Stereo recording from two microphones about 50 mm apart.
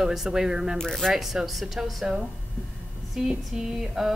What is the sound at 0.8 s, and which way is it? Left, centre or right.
Speech, centre.